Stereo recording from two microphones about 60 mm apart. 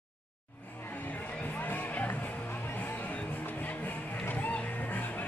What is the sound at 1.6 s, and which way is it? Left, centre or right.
Music, left.